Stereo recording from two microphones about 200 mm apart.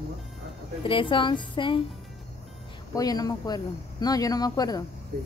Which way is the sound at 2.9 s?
20° left (ahead or behind).